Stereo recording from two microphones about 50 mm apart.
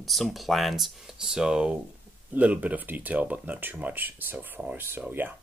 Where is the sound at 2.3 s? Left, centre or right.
Right.